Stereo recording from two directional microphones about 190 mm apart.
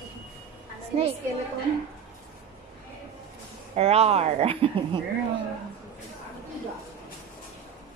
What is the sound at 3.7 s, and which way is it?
Speech, 35° right (ahead or behind).